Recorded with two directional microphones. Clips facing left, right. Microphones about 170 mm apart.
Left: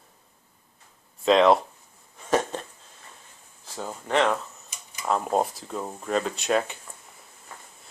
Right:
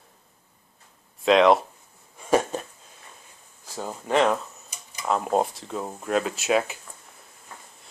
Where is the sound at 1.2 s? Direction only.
Centre (ahead or behind).